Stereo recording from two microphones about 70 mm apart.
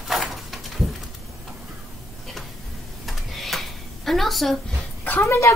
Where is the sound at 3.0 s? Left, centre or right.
Centre.